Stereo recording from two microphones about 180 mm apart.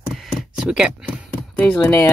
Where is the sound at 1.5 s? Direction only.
5° left (ahead or behind).